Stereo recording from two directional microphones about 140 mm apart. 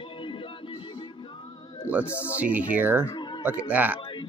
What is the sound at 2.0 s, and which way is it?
Music, 15° left (ahead or behind).